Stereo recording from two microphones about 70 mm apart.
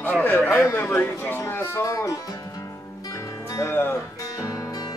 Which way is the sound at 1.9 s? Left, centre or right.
Left.